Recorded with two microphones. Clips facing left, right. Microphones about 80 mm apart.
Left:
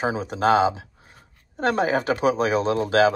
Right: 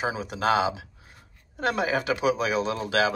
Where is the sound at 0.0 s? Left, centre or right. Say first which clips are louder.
Left 4 dB; left.